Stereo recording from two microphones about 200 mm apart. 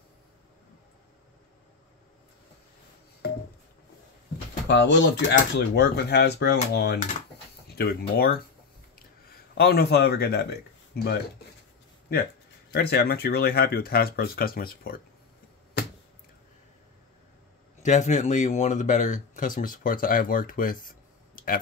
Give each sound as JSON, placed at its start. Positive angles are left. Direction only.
{"t": 4.6, "sound": "speech", "side_deg": 65}
{"t": 9.6, "sound": "speech", "side_deg": 55}
{"t": 12.7, "sound": "speech", "side_deg": 50}
{"t": 17.8, "sound": "speech", "side_deg": 35}